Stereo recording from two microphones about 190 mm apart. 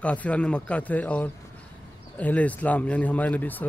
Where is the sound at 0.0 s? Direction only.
5° left (ahead or behind).